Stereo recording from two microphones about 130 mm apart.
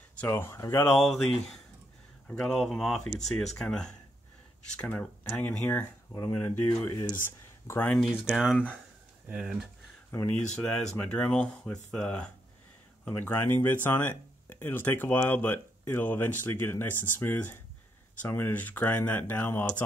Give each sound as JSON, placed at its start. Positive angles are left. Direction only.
{"t": 0.2, "sound": "speech", "side_deg": 20}
{"t": 0.8, "sound": "speech", "side_deg": 0}
{"t": 6.9, "sound": "speech", "side_deg": 25}
{"t": 7.9, "sound": "speech", "side_deg": 0}
{"t": 10.1, "sound": "speech", "side_deg": 15}